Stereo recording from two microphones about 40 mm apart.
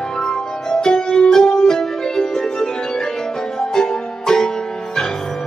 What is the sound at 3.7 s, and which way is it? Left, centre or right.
Music, centre.